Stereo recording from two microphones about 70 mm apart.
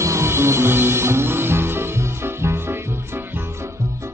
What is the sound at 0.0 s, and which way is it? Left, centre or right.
Music, right.